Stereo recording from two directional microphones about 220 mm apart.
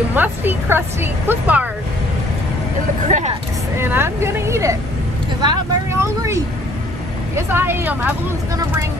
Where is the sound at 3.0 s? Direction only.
30° right (ahead or behind).